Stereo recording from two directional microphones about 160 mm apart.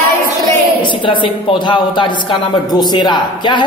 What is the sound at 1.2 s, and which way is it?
Speech, 30° left (ahead or behind).